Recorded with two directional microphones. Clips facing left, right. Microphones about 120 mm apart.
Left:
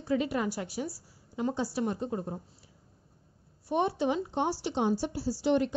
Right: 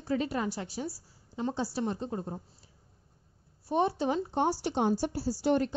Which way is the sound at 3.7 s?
35° right (ahead or behind).